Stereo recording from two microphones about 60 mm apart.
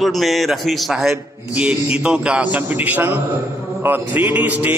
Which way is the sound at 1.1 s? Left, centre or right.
Right.